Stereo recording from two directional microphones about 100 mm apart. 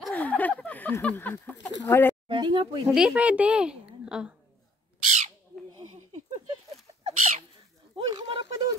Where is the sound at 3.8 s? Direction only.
10° right (ahead or behind).